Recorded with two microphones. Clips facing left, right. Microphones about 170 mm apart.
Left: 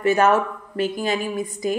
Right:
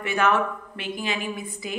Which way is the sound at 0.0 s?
40° left (ahead or behind).